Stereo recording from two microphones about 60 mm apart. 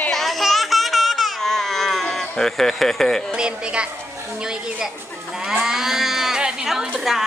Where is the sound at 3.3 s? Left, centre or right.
Centre.